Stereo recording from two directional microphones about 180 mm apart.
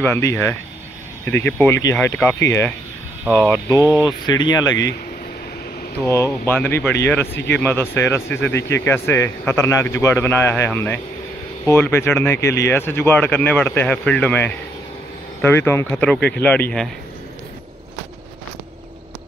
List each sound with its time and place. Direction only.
0.0 s speech: 15° left (ahead or behind)
6.0 s speech: 15° left (ahead or behind)
16.2 s speech: 65° left (ahead or behind)
16.4 s speech: 10° left (ahead or behind)